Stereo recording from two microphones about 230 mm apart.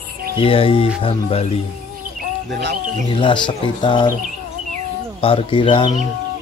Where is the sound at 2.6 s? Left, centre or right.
Right.